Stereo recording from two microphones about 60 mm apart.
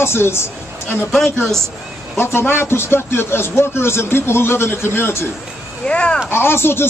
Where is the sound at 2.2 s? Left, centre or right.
Left.